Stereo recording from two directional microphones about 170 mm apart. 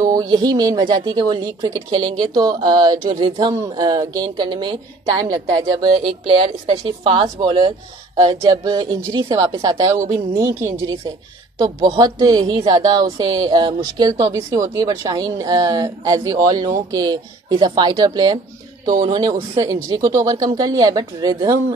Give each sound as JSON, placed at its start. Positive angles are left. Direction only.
{"t": 0.1, "sound": "speech", "side_deg": -20}